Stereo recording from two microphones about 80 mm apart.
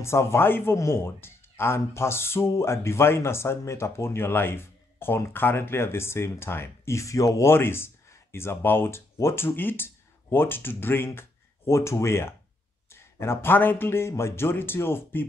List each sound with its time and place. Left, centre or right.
0.0 s speech: left